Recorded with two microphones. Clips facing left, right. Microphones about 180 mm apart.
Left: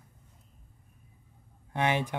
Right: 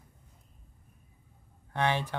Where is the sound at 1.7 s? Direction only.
15° left (ahead or behind).